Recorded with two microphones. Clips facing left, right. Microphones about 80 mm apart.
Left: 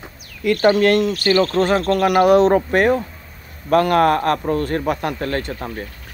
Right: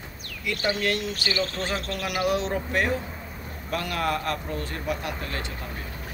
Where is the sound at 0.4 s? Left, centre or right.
Left.